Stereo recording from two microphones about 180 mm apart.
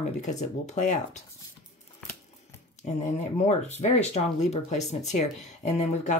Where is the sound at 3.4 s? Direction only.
40° left (ahead or behind).